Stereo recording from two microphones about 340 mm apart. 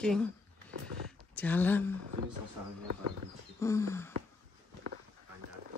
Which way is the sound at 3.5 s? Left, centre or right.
Centre.